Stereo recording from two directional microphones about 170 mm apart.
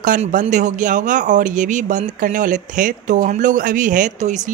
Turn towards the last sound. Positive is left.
turn(degrees=-45)  # may be behind; listen again after turning